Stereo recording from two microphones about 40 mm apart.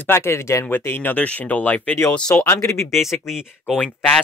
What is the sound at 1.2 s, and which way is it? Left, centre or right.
Speech, left.